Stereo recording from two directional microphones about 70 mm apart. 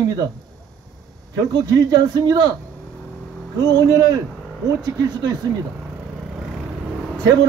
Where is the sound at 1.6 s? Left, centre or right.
Right.